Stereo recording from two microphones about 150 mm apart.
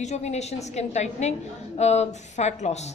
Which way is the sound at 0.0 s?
50° left (ahead or behind).